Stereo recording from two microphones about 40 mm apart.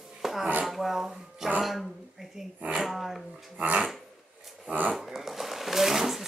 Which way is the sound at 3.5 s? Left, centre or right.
Right.